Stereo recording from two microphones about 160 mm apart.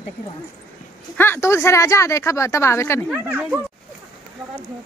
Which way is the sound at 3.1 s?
5° right (ahead or behind).